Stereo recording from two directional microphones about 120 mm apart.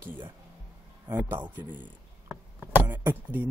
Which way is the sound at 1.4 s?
15° right (ahead or behind).